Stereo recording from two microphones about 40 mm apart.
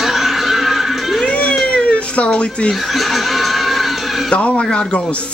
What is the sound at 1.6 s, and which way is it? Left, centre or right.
Cat, left.